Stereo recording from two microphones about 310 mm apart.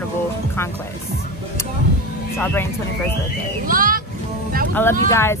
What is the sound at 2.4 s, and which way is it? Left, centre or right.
Speech, centre.